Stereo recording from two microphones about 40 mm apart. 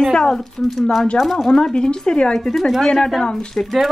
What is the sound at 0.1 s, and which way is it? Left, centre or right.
Speech, centre.